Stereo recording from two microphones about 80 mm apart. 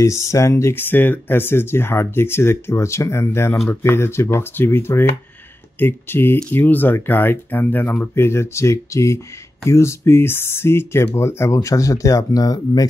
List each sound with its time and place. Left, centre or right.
0.0 s speech: left